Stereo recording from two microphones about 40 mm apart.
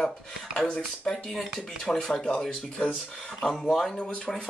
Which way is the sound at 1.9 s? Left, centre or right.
Centre.